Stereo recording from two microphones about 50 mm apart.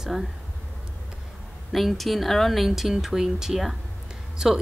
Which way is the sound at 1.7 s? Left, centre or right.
Centre.